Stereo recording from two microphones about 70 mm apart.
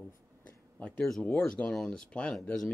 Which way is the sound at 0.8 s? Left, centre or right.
Centre.